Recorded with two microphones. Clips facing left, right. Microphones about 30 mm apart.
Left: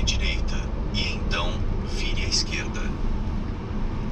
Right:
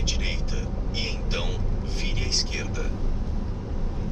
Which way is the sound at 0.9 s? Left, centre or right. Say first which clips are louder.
Left 3 dB; centre.